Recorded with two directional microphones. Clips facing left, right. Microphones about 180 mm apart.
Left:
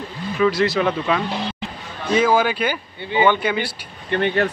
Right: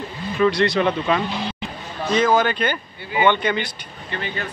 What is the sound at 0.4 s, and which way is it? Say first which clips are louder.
Speech: even; 5° left (ahead or behind).